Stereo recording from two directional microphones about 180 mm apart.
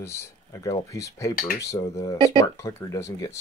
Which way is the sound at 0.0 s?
15° left (ahead or behind).